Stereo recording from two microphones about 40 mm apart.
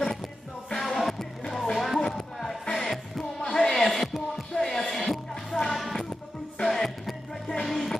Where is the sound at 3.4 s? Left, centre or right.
Centre.